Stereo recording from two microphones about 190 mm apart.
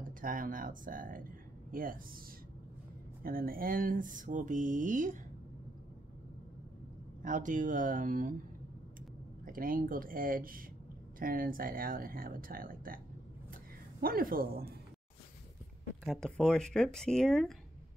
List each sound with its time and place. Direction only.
0.2 s speech: 45° right (ahead or behind)
3.3 s speech: 50° right (ahead or behind)
7.2 s speech: 45° right (ahead or behind)
9.4 s speech: 45° right (ahead or behind)
14.0 s speech: 50° right (ahead or behind)
16.0 s speech: centre (ahead or behind)